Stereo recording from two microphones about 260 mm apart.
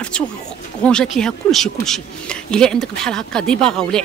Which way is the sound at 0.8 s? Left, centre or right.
Centre.